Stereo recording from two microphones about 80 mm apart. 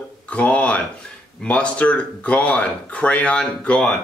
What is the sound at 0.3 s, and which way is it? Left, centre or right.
Speech, centre.